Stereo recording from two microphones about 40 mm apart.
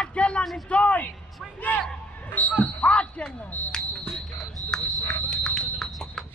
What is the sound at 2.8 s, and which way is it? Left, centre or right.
Speech, left.